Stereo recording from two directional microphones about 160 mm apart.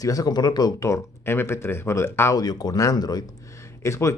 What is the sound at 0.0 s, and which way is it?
Speech, 20° left (ahead or behind).